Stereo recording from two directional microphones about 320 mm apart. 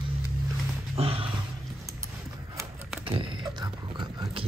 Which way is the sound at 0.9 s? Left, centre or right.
Centre.